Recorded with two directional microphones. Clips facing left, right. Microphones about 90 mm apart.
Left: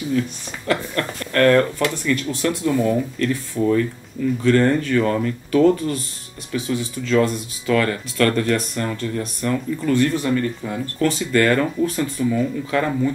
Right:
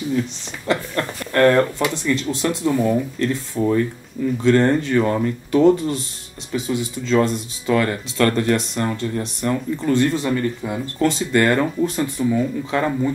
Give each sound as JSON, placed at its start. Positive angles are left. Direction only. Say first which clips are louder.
{"t": 0.7, "sound": "speech", "louder": "even", "side_deg": -20}